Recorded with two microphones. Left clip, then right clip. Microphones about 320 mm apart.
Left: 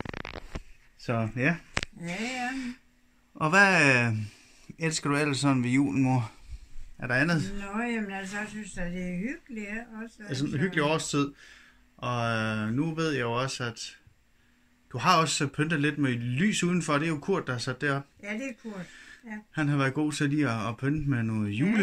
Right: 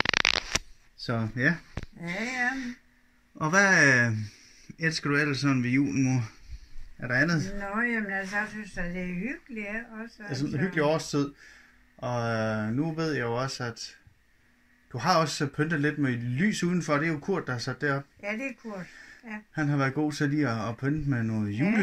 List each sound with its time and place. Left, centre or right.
0.0 s a sound: right
0.9 s a man's voice: centre
7.0 s a man's voice: centre